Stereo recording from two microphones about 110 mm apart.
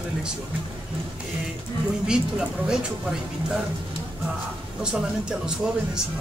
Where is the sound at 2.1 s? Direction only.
5° right (ahead or behind).